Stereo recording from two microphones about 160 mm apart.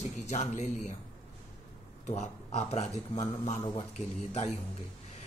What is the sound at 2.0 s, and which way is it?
Speech, 45° left (ahead or behind).